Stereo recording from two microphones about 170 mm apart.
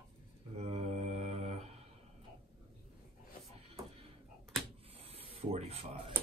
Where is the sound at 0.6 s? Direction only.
40° right (ahead or behind).